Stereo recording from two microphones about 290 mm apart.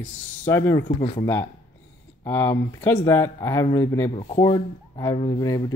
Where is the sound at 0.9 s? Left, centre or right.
Left.